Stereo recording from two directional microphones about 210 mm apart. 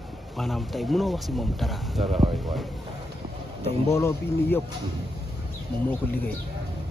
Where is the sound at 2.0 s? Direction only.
30° right (ahead or behind).